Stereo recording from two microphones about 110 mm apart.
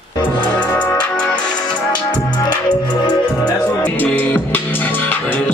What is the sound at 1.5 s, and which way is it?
Music, 40° left (ahead or behind).